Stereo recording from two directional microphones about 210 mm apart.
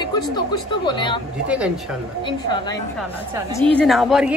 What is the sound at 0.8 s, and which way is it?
Speech, 20° left (ahead or behind).